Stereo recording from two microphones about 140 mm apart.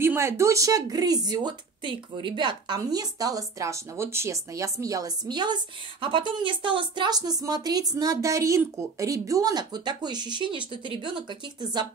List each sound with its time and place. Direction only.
0.0 s speech: 15° right (ahead or behind); by 11.2 s 35° right (ahead or behind)